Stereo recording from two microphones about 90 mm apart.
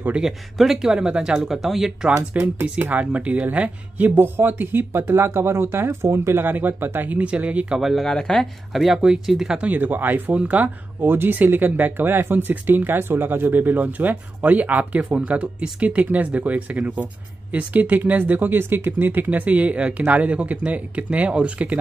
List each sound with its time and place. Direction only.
0.2 s speech: 5° right (ahead or behind)
2.3 s speech: 20° right (ahead or behind)
7.8 s speech: centre (ahead or behind)
9.7 s speech: 20° right (ahead or behind)